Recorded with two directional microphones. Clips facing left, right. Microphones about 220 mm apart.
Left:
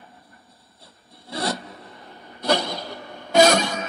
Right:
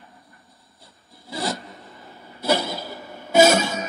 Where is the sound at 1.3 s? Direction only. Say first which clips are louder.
Left 1 dB; centre (ahead or behind).